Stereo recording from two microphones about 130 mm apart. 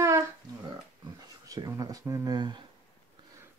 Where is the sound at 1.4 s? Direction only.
25° right (ahead or behind).